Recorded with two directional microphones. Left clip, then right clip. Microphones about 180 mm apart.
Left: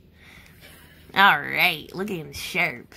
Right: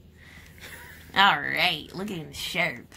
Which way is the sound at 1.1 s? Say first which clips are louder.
Left 3 dB; 25° left (ahead or behind).